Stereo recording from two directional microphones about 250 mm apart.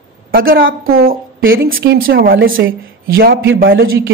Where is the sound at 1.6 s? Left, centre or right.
Right.